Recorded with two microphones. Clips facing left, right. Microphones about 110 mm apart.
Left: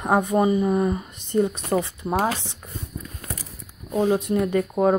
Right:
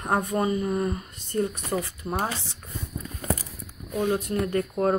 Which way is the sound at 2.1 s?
90° left.